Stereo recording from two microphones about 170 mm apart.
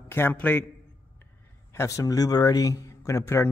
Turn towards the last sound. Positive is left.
turn(degrees=15)  # may be behind; listen again after turning